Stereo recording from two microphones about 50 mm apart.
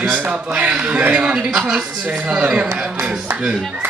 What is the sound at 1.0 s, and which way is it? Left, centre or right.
Speech, right.